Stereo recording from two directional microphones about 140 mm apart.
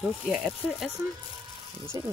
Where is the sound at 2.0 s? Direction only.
25° right (ahead or behind).